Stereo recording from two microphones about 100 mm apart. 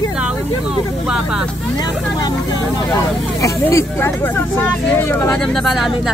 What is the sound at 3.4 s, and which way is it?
Speech, 25° left (ahead or behind).